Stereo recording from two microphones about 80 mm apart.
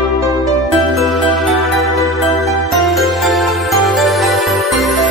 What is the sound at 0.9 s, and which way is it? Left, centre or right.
Music, centre.